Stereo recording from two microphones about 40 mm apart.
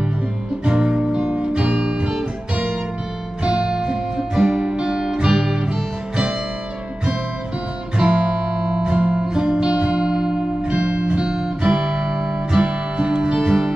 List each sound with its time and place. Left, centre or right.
0.7 s music: centre
3.4 s music: right
8.0 s music: right